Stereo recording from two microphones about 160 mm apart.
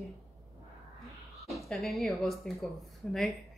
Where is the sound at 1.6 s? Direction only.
Centre (ahead or behind).